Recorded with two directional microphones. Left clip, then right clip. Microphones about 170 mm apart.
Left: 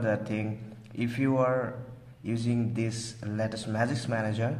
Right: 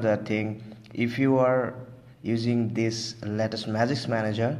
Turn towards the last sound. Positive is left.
turn(degrees=-25)  # may be behind; listen again after turning